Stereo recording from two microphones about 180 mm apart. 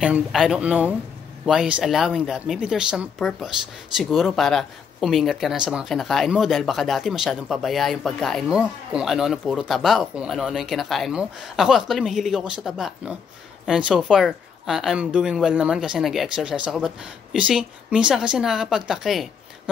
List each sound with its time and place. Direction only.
0.0 s speech: 5° right (ahead or behind)